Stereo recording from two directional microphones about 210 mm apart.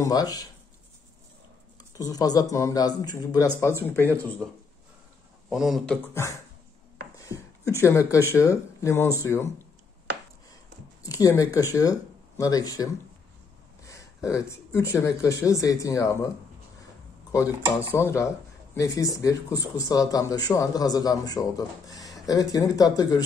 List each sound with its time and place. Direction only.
0.0 s speech: 15° left (ahead or behind)
2.0 s speech: 15° left (ahead or behind)
5.5 s speech: centre (ahead or behind)
7.2 s a sound: 15° left (ahead or behind)
7.8 s speech: 15° left (ahead or behind)
11.0 s speech: 15° left (ahead or behind)
13.8 s a sound: 15° left (ahead or behind)
15.0 s speech: 15° left (ahead or behind)
17.9 s speech: 10° left (ahead or behind)